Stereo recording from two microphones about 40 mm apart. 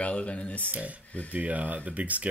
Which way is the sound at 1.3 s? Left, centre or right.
Right.